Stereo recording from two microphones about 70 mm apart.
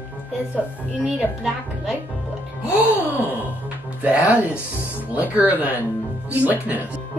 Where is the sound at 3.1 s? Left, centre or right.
Right.